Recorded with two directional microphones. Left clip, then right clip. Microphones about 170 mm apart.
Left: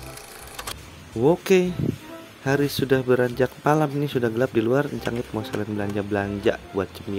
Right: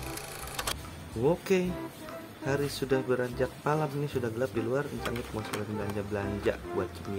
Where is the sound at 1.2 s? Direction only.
40° left (ahead or behind).